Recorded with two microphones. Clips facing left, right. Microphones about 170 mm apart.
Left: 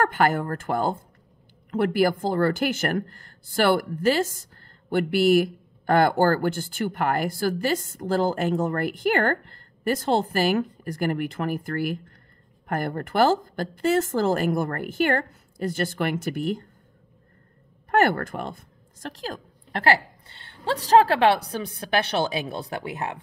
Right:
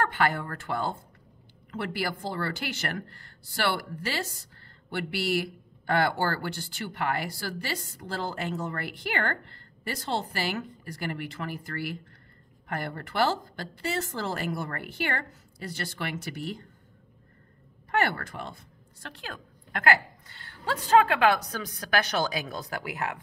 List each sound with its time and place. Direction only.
0.0 s speech: 45° left (ahead or behind)
17.9 s a woman's voice: 50° left (ahead or behind); by 23.1 s 25° left (ahead or behind)